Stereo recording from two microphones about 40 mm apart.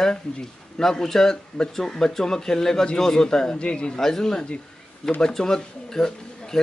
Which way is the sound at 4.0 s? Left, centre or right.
Centre.